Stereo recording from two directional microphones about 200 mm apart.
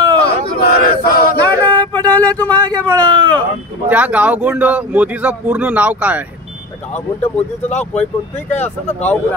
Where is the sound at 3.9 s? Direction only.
5° right (ahead or behind).